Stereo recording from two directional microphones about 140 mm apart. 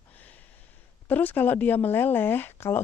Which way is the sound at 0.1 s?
10° left (ahead or behind).